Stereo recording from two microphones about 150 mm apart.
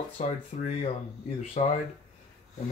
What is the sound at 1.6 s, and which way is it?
Speech, 55° left (ahead or behind).